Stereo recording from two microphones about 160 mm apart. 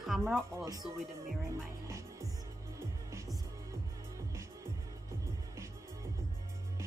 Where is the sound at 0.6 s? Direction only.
20° right (ahead or behind).